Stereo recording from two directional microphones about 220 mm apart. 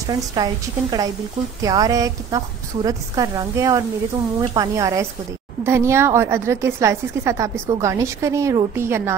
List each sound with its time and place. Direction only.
0.0 s a woman's voice: 15° right (ahead or behind)